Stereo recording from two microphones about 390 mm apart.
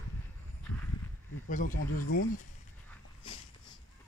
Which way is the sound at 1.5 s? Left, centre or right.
Centre.